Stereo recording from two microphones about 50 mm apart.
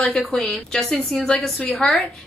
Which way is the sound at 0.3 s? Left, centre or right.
Centre.